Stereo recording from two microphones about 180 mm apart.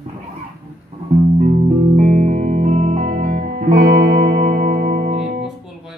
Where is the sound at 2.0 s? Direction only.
50° right (ahead or behind).